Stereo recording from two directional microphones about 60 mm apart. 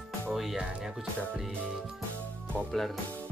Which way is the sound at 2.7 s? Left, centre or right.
Centre.